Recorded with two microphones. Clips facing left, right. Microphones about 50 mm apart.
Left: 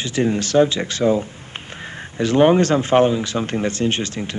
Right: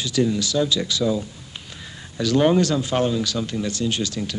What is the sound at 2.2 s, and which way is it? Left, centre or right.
Speech, left.